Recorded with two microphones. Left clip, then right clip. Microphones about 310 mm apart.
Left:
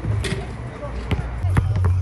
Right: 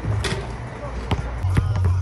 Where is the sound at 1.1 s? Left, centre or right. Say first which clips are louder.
Right 2 dB; centre.